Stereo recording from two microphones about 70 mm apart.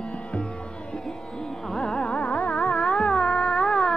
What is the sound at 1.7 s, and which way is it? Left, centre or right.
Carnatic music, centre.